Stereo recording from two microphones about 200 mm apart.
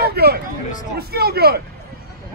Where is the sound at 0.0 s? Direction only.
50° right (ahead or behind).